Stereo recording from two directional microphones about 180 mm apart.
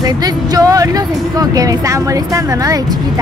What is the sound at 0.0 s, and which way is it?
Speech, 20° right (ahead or behind).